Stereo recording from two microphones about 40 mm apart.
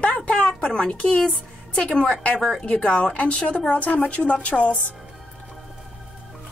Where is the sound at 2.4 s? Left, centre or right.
Centre.